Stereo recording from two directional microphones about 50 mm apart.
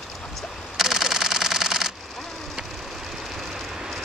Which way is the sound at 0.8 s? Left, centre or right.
Centre.